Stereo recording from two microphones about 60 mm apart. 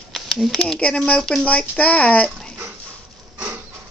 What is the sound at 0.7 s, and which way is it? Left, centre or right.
A child's voice, centre.